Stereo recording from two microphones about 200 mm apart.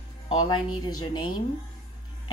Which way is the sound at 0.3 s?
20° left (ahead or behind).